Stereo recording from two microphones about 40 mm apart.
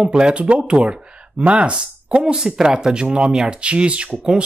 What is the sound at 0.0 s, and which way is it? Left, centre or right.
Speech, right.